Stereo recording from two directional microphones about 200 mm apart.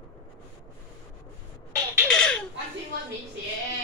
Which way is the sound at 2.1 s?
5° left (ahead or behind).